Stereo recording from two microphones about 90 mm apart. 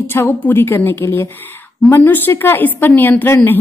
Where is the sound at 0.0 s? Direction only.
25° left (ahead or behind).